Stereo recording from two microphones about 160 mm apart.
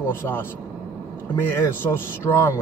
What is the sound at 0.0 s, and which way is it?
Speech, 15° left (ahead or behind).